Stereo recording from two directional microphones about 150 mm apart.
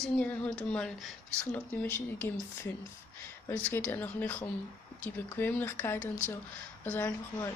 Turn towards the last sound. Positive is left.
turn(degrees=15)  # may be behind; listen again after turning